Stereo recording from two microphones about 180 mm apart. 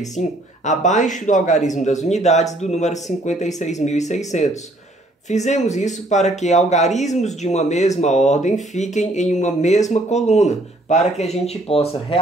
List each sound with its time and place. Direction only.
0.2 s speech: 40° left (ahead or behind)